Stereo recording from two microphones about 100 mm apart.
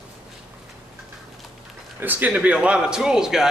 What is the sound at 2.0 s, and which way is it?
A man's voice, 20° right (ahead or behind).